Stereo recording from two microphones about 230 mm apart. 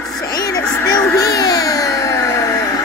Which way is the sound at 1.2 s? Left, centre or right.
Centre.